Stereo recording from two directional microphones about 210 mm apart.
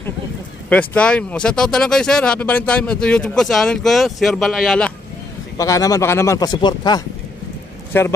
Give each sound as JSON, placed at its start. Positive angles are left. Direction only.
{"t": 0.7, "sound": "speech", "side_deg": 5}
{"t": 5.6, "sound": "speech", "side_deg": 15}